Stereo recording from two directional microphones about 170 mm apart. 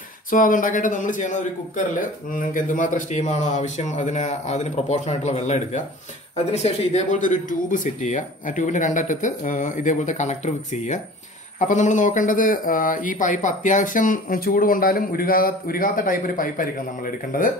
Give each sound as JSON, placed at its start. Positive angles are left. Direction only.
{"t": 0.3, "sound": "speech", "side_deg": 50}